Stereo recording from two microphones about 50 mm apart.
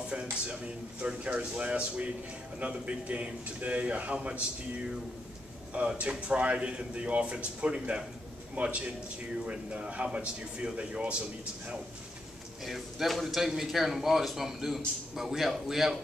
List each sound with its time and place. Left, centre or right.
1.0 s a man's voice: right
5.8 s a man's voice: right
12.6 s speech: centre